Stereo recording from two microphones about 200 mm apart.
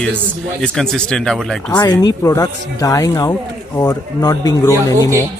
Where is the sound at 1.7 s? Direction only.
20° left (ahead or behind).